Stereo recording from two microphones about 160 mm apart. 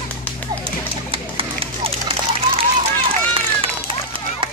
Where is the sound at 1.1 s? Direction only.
35° right (ahead or behind).